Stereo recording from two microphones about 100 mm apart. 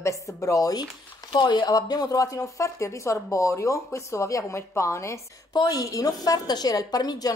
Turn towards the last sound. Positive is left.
turn(degrees=40)  # may be behind; listen again after turning